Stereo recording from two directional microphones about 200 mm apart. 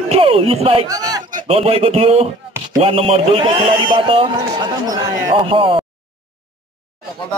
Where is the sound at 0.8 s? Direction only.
20° right (ahead or behind).